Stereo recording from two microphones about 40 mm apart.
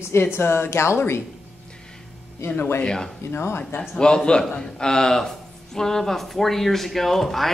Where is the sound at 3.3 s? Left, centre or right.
Left.